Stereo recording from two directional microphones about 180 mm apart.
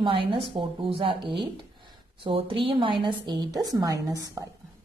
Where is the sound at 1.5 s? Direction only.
30° right (ahead or behind).